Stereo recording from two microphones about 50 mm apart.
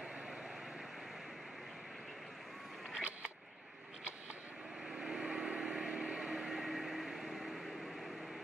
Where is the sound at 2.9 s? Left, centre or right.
Right.